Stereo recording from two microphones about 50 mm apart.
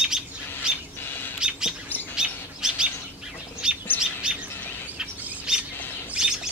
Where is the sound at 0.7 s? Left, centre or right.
Centre.